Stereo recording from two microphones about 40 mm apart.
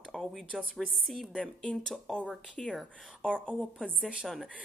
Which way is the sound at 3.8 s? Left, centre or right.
Right.